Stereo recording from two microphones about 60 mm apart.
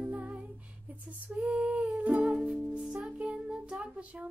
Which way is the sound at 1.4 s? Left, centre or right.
Right.